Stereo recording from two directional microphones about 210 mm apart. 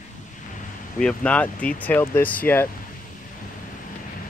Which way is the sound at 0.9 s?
5° left (ahead or behind).